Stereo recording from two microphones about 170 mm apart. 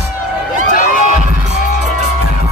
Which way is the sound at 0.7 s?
50° left (ahead or behind).